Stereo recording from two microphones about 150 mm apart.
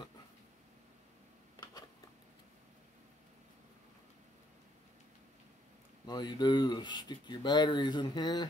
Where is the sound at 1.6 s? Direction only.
25° left (ahead or behind).